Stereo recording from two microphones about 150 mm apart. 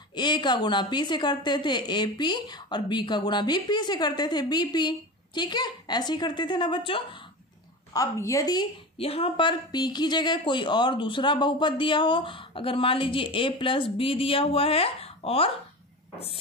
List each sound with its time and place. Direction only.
0.1 s a woman's voice: 30° left (ahead or behind)
7.9 s a woman's voice: 20° left (ahead or behind)
8.9 s speech: 40° left (ahead or behind)